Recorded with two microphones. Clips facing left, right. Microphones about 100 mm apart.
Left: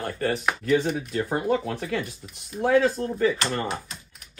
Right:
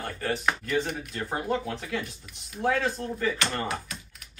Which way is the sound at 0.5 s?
5° left (ahead or behind).